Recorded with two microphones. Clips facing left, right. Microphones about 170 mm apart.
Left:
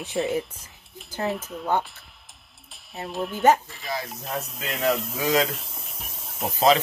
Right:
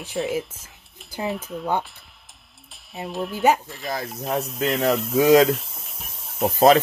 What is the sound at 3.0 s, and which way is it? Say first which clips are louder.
Speech: right 1 dB; centre (ahead or behind).